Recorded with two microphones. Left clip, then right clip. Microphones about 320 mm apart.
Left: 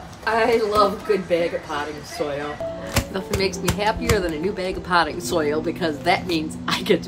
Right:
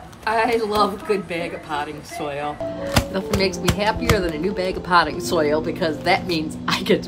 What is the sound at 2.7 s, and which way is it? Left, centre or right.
Speech, centre.